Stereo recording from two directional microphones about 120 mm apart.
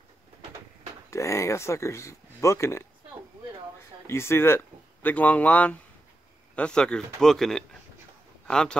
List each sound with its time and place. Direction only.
1.1 s speech: 25° left (ahead or behind)
4.1 s speech: 20° left (ahead or behind)